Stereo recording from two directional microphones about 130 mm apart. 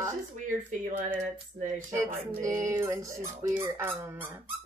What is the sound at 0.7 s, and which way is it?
Speech, 70° right (ahead or behind).